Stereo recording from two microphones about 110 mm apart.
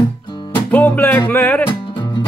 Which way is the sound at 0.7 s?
15° left (ahead or behind).